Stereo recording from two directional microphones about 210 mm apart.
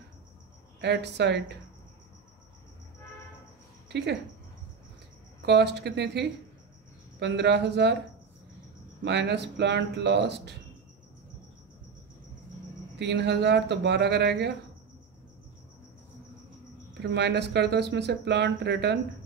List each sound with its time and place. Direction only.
0.7 s speech: 55° right (ahead or behind)
3.9 s speech: 55° right (ahead or behind)
5.4 s speech: 55° right (ahead or behind)
9.0 s speech: 55° right (ahead or behind)
13.0 s speech: 55° right (ahead or behind)
17.0 s speech: 55° right (ahead or behind)